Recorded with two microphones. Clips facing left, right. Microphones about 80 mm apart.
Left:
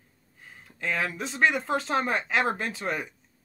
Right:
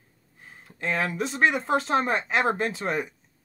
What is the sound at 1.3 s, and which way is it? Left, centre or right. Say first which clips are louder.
Speech: right 1 dB; right.